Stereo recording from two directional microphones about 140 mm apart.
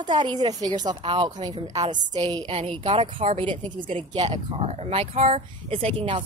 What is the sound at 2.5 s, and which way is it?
A woman's voice, 40° right (ahead or behind).